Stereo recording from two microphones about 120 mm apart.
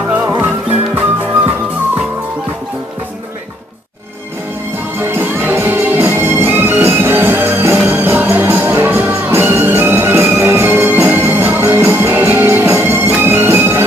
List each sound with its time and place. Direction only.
0.4 s music: 15° right (ahead or behind)
4.9 s music: 20° right (ahead or behind)